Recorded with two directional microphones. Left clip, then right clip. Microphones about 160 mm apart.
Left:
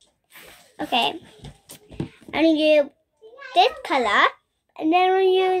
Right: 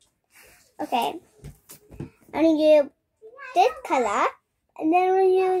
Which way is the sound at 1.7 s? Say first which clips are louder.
Left 5 dB; 15° left (ahead or behind).